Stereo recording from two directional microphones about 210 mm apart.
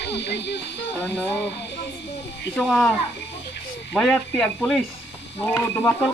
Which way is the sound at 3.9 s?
5° left (ahead or behind).